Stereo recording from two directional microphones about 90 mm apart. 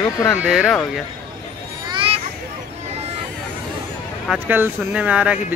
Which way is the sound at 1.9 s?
90° right.